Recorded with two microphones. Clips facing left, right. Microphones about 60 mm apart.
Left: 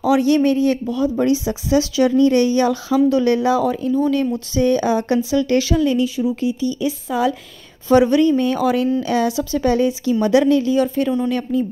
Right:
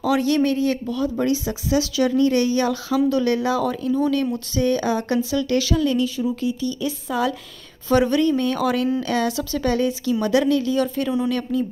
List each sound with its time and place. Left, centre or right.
0.0 s speech: centre
3.6 s speech: centre
4.6 s speech: left
10.8 s speech: centre